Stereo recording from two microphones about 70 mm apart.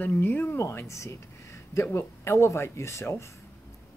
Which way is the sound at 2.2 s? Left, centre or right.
Left.